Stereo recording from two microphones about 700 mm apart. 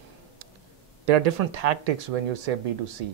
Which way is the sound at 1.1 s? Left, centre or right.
Right.